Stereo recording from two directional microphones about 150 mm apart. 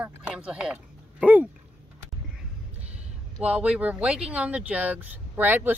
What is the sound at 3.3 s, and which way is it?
Speech, 10° right (ahead or behind).